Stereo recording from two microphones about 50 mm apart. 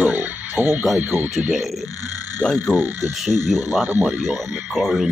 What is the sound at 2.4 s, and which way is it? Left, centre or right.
Speech, left.